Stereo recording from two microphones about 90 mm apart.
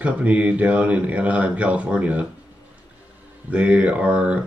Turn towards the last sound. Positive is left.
turn(degrees=-15)  # may be behind; listen again after turning